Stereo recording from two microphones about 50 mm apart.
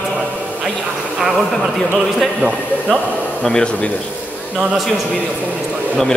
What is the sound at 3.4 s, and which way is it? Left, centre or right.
Speech, centre.